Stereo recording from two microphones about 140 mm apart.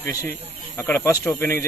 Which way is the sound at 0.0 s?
15° left (ahead or behind).